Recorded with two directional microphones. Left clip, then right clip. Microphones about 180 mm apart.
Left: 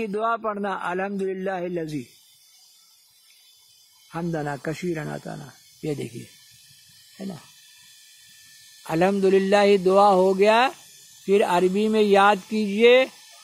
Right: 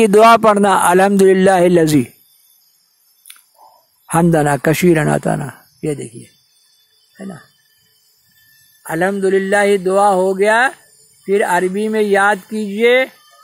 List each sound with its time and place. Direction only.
0.0 s speech: 50° right (ahead or behind)
4.1 s speech: 45° right (ahead or behind)
7.2 s speech: 5° left (ahead or behind)
8.8 s speech: 10° left (ahead or behind)